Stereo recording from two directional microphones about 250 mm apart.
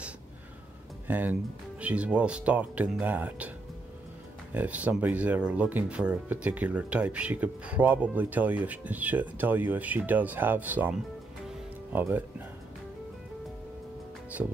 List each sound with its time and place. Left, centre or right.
1.0 s speech: centre
11.4 s music: centre